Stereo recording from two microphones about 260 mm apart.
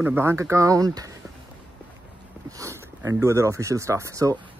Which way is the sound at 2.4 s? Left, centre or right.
Centre.